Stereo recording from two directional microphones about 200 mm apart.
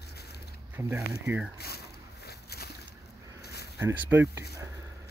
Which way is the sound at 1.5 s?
50° left (ahead or behind).